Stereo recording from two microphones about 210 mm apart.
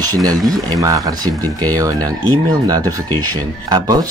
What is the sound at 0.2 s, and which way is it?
Speech, 20° right (ahead or behind).